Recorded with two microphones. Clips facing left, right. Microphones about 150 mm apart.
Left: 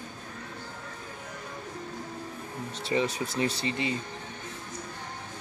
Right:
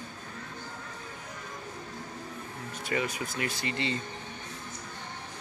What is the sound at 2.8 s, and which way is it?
Speech, 30° left (ahead or behind).